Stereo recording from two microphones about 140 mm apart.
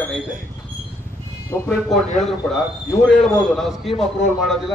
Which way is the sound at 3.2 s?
5° left (ahead or behind).